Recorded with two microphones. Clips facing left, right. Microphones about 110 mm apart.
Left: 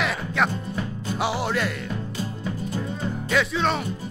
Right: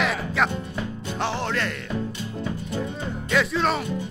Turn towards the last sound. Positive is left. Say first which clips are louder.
# even
turn(degrees=0)  # may be behind; listen again after turning